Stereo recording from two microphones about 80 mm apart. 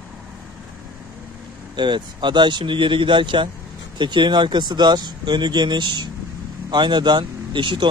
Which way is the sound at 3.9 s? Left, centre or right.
Right.